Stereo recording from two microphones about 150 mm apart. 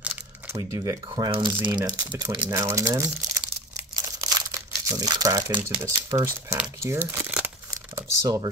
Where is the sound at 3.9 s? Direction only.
25° right (ahead or behind).